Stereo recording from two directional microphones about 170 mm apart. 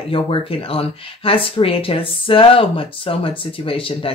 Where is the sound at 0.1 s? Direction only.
30° left (ahead or behind).